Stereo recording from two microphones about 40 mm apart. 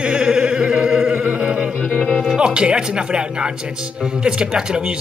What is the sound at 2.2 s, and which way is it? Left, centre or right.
Speech, centre.